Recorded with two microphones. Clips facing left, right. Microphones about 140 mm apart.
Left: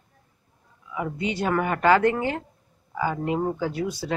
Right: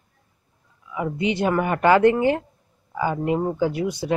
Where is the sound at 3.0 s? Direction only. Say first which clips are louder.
Right 3 dB; 15° right (ahead or behind).